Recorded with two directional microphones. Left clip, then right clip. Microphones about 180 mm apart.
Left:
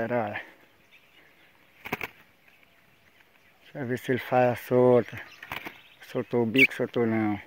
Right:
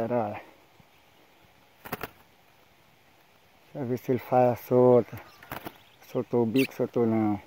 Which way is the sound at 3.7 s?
25° left (ahead or behind).